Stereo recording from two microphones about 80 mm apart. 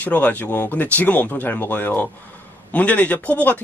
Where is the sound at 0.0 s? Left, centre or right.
Left.